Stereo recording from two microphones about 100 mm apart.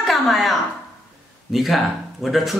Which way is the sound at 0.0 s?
Centre (ahead or behind).